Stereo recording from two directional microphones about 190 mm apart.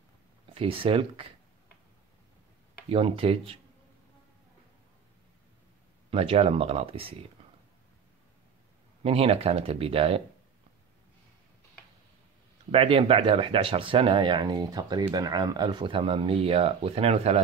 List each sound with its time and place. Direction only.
0.6 s speech: 30° right (ahead or behind)
2.9 s speech: 30° right (ahead or behind)
6.0 s speech: 30° right (ahead or behind)
9.0 s speech: 30° right (ahead or behind)
12.7 s speech: 30° right (ahead or behind)